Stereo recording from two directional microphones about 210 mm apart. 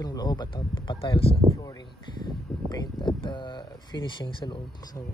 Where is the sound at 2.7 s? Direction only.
20° left (ahead or behind).